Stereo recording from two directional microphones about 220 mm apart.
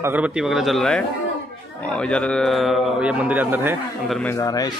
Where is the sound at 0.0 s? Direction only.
5° right (ahead or behind).